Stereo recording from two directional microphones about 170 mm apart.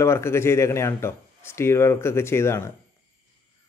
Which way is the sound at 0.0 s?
15° left (ahead or behind).